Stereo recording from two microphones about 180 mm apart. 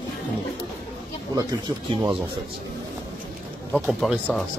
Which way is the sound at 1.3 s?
20° right (ahead or behind).